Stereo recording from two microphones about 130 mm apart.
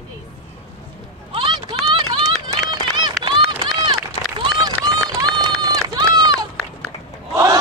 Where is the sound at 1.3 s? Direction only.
40° right (ahead or behind).